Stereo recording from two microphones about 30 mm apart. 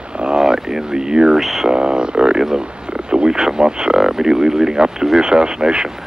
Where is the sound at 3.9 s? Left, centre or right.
Centre.